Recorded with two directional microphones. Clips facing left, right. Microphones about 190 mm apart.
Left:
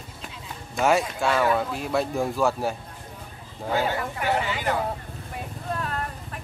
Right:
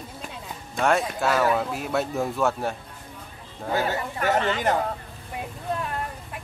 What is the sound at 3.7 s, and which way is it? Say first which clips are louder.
Speech: even; 15° left (ahead or behind).